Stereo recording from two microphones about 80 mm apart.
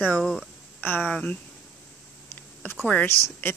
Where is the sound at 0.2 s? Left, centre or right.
Centre.